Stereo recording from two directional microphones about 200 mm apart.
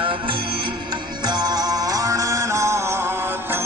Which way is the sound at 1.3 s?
20° right (ahead or behind).